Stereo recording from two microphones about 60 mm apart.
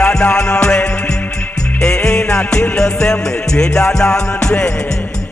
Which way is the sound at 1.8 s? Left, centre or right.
Centre.